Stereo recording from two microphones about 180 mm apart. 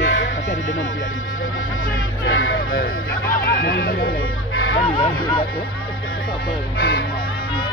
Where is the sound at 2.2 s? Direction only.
90° left.